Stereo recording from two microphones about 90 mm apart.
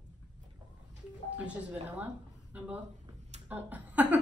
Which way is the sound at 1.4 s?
15° right (ahead or behind).